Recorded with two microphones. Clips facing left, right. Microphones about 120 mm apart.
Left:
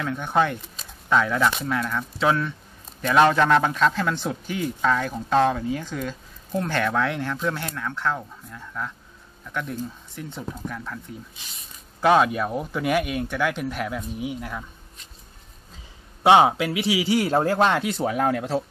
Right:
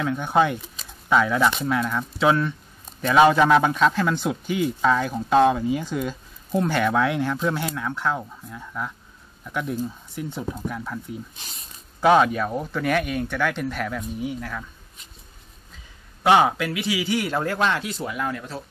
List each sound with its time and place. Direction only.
0.0 s speech: 5° right (ahead or behind)
12.0 s speech: centre (ahead or behind)
16.2 s a man's voice: 25° left (ahead or behind); by 18.4 s 50° left (ahead or behind)